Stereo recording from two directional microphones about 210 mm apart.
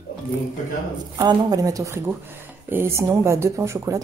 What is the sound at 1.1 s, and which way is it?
Speech, 15° right (ahead or behind).